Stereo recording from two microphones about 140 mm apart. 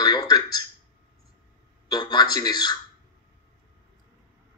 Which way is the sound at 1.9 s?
30° left (ahead or behind).